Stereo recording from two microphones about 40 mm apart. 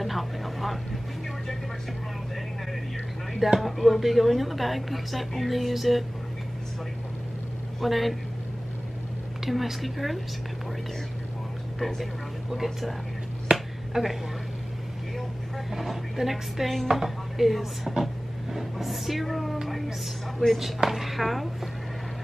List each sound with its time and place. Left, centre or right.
0.0 s vehicle: centre
3.3 s a woman's voice: centre
7.8 s a woman's voice: centre
9.4 s a woman's voice: centre
13.5 s finger snapping: right
13.9 s speech: centre
15.7 s a woman's voice: centre